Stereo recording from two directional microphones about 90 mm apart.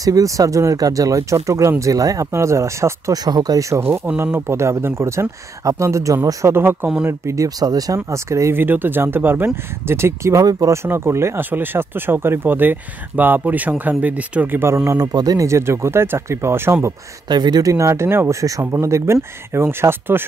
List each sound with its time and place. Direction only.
0.0 s speech: 40° right (ahead or behind)
3.3 s speech: 45° right (ahead or behind); by 10.4 s 30° right (ahead or behind)
10.4 s speech: 45° right (ahead or behind)
10.7 s speech: 30° right (ahead or behind)
14.9 s speech: 45° right (ahead or behind); by 16.9 s 25° right (ahead or behind)
17.3 s speech: 50° right (ahead or behind); by 20.2 s 25° right (ahead or behind)